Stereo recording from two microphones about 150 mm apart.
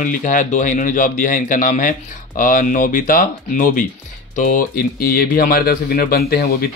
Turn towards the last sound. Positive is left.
turn(degrees=90)